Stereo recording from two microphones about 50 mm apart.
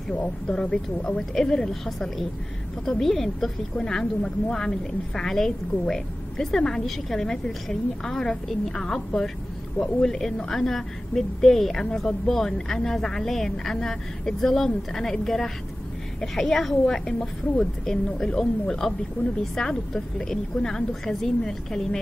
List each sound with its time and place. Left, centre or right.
0.2 s a woman's voice: centre